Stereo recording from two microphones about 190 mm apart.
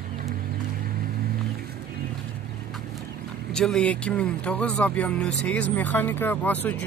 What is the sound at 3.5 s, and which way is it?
Speech, 5° left (ahead or behind).